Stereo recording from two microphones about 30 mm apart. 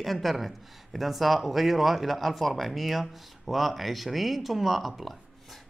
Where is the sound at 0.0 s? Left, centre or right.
Centre.